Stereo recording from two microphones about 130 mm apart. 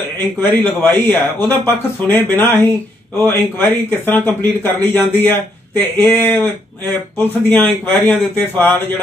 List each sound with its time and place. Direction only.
0.0 s speech: 15° left (ahead or behind)